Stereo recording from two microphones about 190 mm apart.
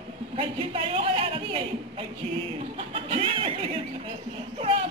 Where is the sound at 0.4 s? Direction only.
30° right (ahead or behind).